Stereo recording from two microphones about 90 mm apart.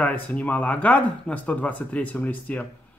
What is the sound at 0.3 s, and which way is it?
A man's voice, 10° left (ahead or behind).